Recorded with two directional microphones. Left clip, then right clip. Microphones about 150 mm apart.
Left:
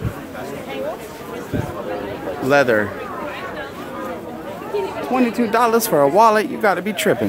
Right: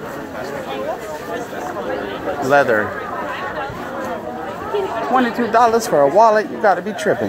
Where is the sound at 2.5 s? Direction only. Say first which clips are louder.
Right 1 dB; 90° left.